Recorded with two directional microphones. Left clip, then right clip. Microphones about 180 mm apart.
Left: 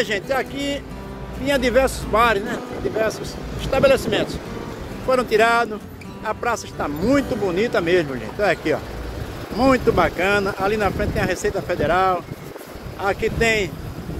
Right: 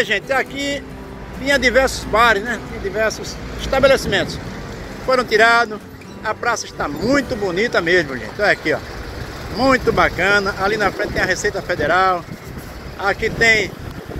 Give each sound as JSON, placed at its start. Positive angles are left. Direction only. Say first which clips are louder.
{"t": 0.0, "sound": "speech", "louder": "right 4 dB", "side_deg": 5}
{"t": 5.0, "sound": "speech", "louder": "right 3 dB", "side_deg": 10}